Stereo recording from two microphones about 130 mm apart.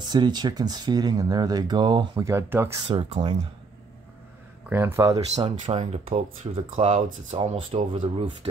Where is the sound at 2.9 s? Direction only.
40° right (ahead or behind).